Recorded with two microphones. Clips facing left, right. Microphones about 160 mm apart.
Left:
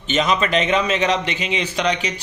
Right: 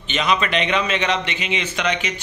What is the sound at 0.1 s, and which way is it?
Speech, 40° left (ahead or behind).